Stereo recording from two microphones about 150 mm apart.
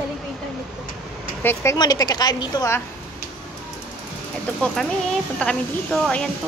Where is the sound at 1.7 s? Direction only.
25° left (ahead or behind).